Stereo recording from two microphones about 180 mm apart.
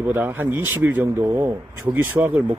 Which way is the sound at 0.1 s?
10° right (ahead or behind).